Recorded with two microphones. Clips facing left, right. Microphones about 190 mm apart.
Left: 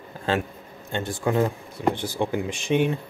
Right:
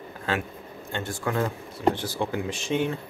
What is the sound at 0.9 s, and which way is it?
A man's voice, 20° left (ahead or behind).